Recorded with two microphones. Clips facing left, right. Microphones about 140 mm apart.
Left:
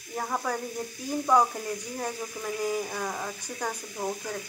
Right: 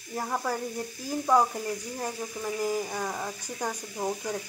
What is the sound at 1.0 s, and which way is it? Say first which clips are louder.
Speech: even; 5° right (ahead or behind).